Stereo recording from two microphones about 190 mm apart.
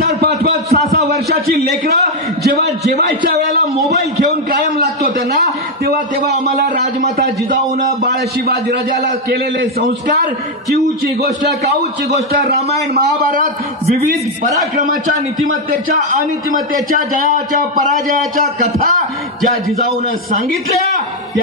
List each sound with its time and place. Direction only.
0.0 s a sound: 55° right (ahead or behind)
0.9 s a man's voice: 55° right (ahead or behind)
6.5 s a man's voice: 40° right (ahead or behind)
8.0 s a man's voice: 60° right (ahead or behind)
12.9 s a man's voice: 50° right (ahead or behind)